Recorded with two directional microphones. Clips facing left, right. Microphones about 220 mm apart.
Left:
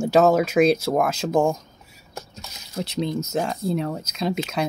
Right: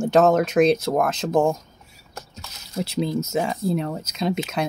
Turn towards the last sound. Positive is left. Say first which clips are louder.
# right 1 dB
turn(degrees=0)  # may be behind; listen again after turning